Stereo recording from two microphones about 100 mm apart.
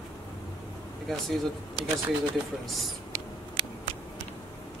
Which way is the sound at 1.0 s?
Centre (ahead or behind).